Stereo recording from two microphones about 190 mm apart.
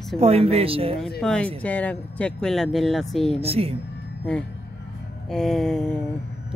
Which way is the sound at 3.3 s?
30° right (ahead or behind).